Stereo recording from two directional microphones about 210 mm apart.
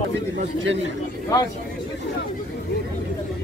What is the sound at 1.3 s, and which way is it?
Speech, 15° left (ahead or behind).